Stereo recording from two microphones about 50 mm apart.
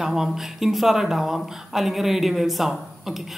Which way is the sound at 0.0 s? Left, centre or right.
Centre.